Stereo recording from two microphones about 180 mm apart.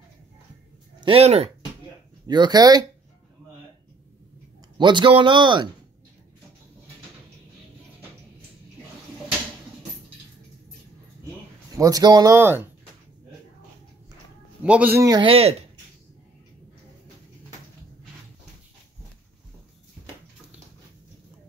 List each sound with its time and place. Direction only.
1.0 s speech: 35° right (ahead or behind)
2.2 s a man's voice: 25° right (ahead or behind)
4.7 s a man's voice: 25° right (ahead or behind)
11.7 s a man's voice: 20° right (ahead or behind)
14.6 s a man's voice: 5° right (ahead or behind)
15.0 s speech: 25° right (ahead or behind)